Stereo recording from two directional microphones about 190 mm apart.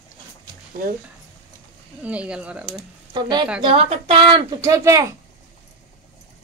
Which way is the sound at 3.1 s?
25° right (ahead or behind).